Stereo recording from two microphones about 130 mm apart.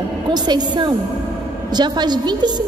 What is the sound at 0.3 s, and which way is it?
A woman's voice, 35° right (ahead or behind).